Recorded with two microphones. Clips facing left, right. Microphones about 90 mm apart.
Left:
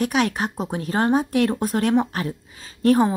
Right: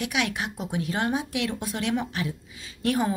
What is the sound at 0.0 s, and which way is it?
A woman's voice, 40° left (ahead or behind).